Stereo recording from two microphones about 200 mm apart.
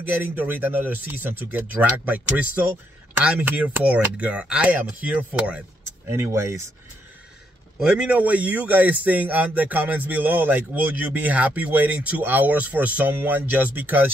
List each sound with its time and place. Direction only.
0.2 s a man's voice: 10° right (ahead or behind)
7.8 s a man's voice: 5° right (ahead or behind)